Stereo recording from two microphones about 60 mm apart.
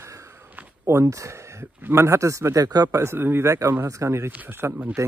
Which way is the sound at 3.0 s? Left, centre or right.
Right.